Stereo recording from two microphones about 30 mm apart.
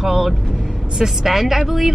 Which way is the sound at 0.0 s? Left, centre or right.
Centre.